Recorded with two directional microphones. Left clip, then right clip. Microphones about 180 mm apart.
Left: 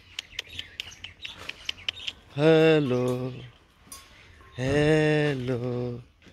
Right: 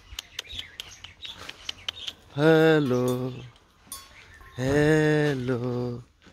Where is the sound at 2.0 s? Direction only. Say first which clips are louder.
Even; 25° right (ahead or behind).